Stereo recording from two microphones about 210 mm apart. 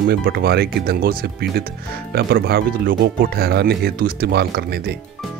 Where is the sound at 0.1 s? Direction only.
50° right (ahead or behind).